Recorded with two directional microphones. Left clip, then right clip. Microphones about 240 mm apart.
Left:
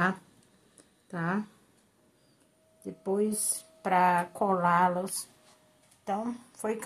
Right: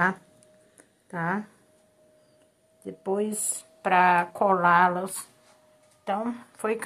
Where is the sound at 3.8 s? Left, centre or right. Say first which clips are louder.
Right 5 dB; centre.